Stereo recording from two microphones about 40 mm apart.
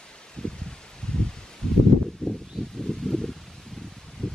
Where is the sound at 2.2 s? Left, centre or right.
Left.